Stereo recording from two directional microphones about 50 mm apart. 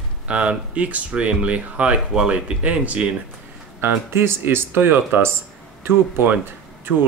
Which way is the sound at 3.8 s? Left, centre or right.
Right.